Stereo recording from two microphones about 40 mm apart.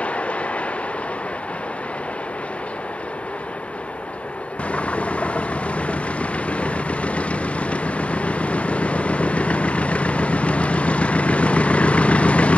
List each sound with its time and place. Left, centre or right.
0.0 s vehicle: left
4.6 s vehicle: left